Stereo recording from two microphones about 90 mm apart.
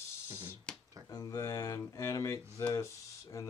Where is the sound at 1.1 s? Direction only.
40° left (ahead or behind).